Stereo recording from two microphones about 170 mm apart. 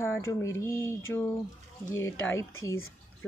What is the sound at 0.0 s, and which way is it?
Speech, 15° left (ahead or behind).